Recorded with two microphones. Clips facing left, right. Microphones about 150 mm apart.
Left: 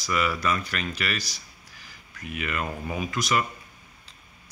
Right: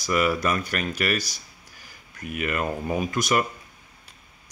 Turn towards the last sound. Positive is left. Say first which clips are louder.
# right 3 dB
turn(degrees=-50)  # may be behind; listen again after turning